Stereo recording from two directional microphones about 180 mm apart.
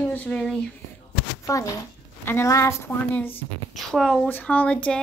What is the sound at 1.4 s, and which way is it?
A woman's voice, 15° left (ahead or behind).